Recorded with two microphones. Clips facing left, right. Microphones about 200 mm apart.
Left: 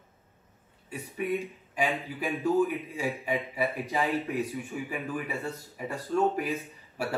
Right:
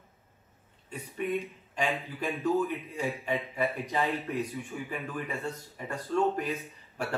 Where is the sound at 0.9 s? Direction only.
10° left (ahead or behind).